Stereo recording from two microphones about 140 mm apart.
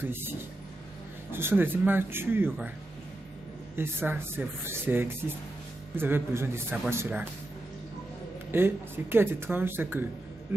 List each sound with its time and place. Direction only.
0.0 s speech: 15° right (ahead or behind)
3.7 s speech: 15° right (ahead or behind)
8.5 s speech: 15° right (ahead or behind)